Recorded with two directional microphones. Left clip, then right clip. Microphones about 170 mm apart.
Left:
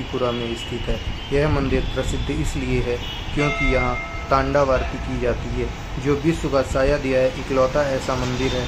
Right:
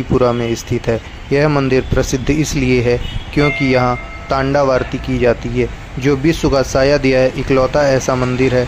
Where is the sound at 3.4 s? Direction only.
50° right (ahead or behind).